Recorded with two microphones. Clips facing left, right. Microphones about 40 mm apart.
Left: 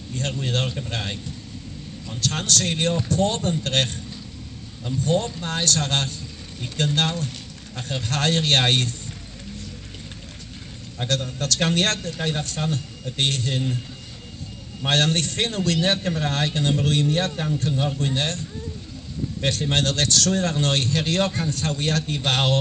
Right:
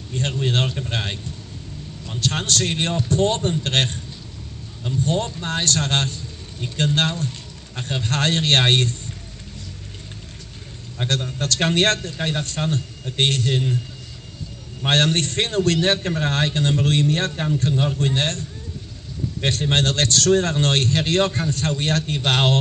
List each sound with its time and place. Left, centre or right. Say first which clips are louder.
0.1 s a man's voice: right 3 dB; right
5.0 s a man's voice: left 1 dB; right
11.1 s a man's voice: right 1 dB; right
14.9 s a man's voice: right 2 dB; right
19.4 s a man's voice: right 2 dB; right